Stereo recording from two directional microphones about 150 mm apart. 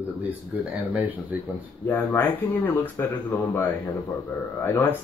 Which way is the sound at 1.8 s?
15° left (ahead or behind).